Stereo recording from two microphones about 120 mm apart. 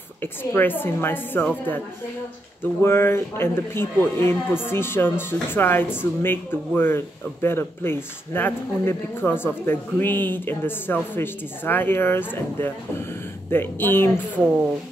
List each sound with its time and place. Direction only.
0.2 s speech: 15° left (ahead or behind)